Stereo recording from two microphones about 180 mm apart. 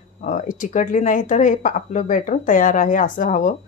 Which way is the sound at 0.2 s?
45° left (ahead or behind).